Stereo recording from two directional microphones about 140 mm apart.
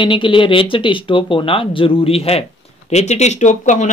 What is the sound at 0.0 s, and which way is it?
Speech, 35° left (ahead or behind).